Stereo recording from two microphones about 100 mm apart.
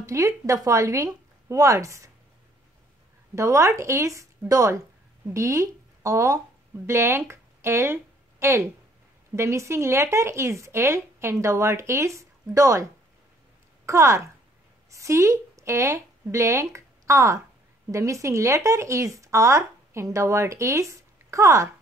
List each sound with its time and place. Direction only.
0.0 s speech: 30° right (ahead or behind)
3.3 s speech: 30° right (ahead or behind)